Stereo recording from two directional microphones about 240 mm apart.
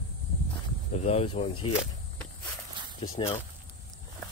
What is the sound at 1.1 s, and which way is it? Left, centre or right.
Speech, left.